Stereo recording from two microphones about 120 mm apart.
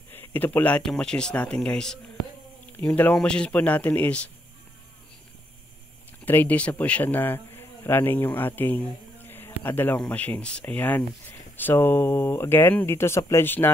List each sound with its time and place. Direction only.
0.1 s speech: 15° left (ahead or behind)
3.0 s speech: 10° left (ahead or behind)
6.2 s a man's voice: 15° left (ahead or behind)